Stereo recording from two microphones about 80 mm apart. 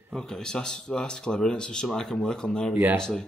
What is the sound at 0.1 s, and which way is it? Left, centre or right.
Speech, centre.